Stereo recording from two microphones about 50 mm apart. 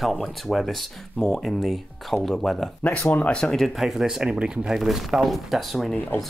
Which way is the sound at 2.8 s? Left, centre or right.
Left.